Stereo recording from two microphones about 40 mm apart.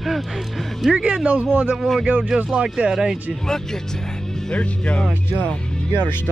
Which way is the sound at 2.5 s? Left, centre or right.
Centre.